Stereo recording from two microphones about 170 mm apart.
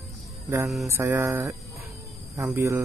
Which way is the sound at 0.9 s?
15° right (ahead or behind).